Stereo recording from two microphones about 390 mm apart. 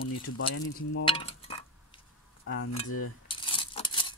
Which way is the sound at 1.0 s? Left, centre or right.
Centre.